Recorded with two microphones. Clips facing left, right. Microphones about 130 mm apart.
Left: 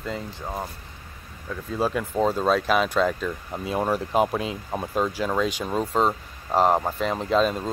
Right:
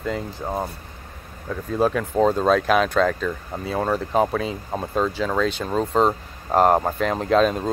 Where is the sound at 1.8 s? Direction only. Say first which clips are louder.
Right 4 dB; 5° left (ahead or behind).